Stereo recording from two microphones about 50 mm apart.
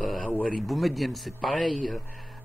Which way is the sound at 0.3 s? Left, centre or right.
Left.